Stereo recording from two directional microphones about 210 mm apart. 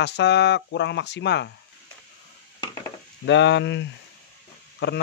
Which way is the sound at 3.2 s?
55° left (ahead or behind).